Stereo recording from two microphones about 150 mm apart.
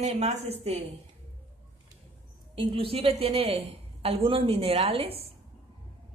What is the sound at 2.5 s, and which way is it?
A woman's voice, 40° right (ahead or behind).